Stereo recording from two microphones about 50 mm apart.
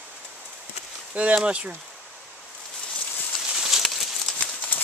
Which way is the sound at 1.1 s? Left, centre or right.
Right.